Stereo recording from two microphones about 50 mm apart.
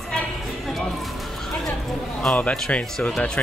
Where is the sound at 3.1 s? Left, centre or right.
Centre.